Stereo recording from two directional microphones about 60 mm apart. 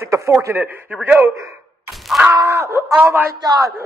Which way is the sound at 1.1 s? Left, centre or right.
Right.